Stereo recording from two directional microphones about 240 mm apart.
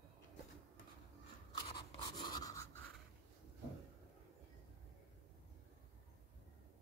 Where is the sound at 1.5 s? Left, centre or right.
Left.